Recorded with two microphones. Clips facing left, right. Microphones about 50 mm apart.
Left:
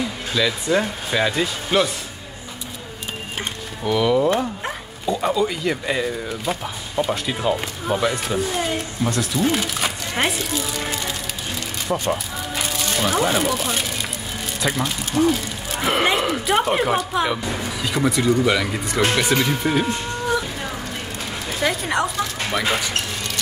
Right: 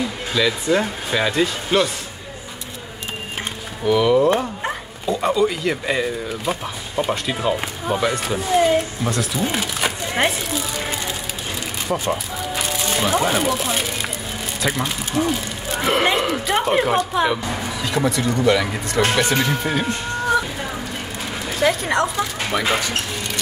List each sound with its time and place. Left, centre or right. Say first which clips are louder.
0.3 s speech: right 1 dB; centre
3.8 s speech: right 3 dB; centre
10.8 s a sound: right 1 dB; centre
11.9 s speech: even; centre
21.5 s speech: right 3 dB; centre